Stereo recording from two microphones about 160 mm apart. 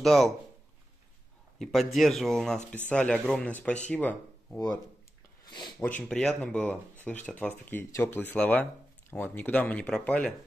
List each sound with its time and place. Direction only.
0.0 s speech: centre (ahead or behind)
1.6 s speech: centre (ahead or behind)
5.4 s a sound: 25° left (ahead or behind)
5.8 s speech: 10° left (ahead or behind)